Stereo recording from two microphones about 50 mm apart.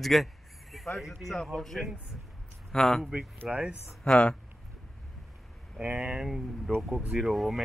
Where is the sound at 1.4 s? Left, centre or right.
Centre.